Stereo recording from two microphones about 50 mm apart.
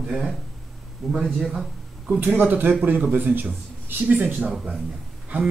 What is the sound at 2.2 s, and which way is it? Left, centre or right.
Speech, right.